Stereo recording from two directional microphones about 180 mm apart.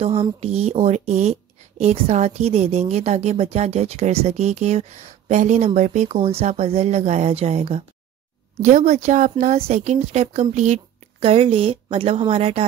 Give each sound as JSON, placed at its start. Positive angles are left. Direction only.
{"t": 0.0, "sound": "a woman's voice", "side_deg": -30}